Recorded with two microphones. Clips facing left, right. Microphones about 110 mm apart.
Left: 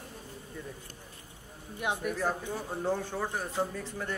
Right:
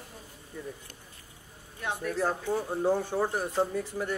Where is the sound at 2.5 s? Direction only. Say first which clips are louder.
Right 5 dB; 15° right (ahead or behind).